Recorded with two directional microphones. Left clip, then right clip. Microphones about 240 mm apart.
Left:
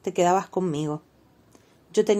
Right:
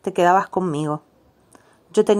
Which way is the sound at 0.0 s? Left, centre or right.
Centre.